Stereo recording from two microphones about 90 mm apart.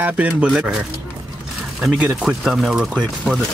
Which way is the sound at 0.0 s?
15° right (ahead or behind).